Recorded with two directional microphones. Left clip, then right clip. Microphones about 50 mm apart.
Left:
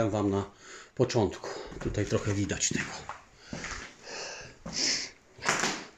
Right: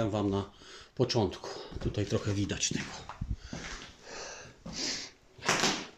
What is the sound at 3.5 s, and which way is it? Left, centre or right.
Sniff, centre.